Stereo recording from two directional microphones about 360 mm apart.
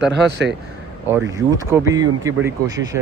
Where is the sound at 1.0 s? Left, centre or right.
Centre.